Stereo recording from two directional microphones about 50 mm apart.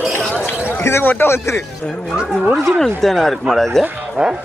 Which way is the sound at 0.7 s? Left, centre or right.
Left.